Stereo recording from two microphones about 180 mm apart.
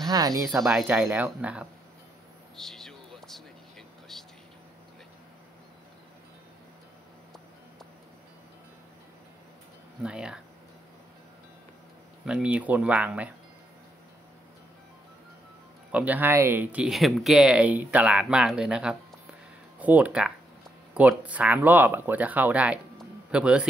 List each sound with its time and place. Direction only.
0.1 s speech: 20° right (ahead or behind)
0.5 s speech: centre (ahead or behind)
2.5 s a sound: centre (ahead or behind)
10.0 s speech: 5° right (ahead or behind)
12.3 s speech: 5° right (ahead or behind)
15.9 s speech: 10° right (ahead or behind)